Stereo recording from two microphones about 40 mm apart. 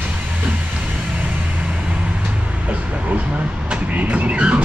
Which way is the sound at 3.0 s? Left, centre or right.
Right.